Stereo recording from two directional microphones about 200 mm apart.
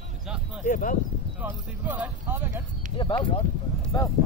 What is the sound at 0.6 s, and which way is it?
Speech, 40° left (ahead or behind).